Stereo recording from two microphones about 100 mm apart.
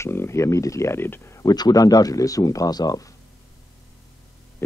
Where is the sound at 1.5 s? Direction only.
40° left (ahead or behind).